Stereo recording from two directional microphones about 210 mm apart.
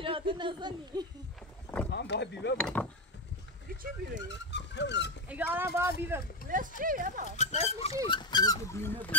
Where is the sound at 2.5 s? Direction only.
5° left (ahead or behind).